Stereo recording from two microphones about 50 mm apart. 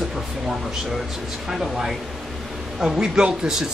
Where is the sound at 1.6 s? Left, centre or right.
Centre.